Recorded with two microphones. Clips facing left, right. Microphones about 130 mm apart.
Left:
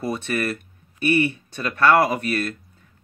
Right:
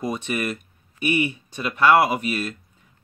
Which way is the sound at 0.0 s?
15° right (ahead or behind).